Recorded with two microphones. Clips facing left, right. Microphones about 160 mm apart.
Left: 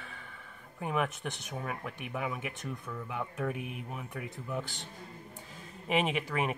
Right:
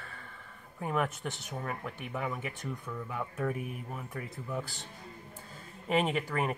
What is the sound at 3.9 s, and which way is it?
Speech, 5° left (ahead or behind).